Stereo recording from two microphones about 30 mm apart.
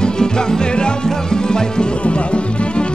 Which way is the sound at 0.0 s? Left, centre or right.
Left.